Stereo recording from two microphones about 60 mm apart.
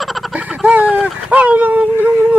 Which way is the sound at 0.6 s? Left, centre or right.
Right.